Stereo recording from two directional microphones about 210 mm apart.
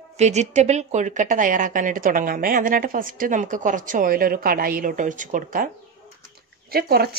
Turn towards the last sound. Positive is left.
turn(degrees=-45)  # may be behind; listen again after turning